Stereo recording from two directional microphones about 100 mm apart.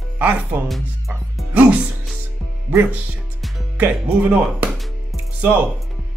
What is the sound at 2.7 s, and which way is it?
Speech, 15° right (ahead or behind).